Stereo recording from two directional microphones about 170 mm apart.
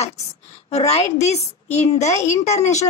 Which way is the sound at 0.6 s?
40° left (ahead or behind).